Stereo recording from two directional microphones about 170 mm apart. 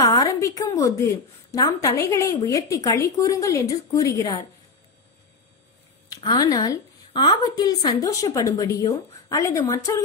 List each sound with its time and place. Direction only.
0.0 s a woman's voice: 20° left (ahead or behind)
6.0 s a woman's voice: 25° left (ahead or behind)